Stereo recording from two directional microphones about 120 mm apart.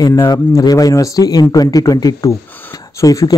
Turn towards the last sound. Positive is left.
turn(degrees=30)  # may be behind; listen again after turning